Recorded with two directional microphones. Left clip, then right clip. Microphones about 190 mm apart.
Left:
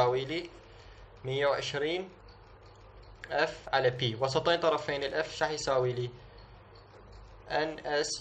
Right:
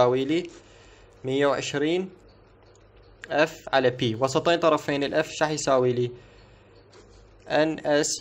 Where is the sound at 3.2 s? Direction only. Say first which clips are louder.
Right 7 dB; 45° right (ahead or behind).